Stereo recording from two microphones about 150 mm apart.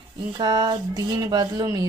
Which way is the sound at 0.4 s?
30° right (ahead or behind).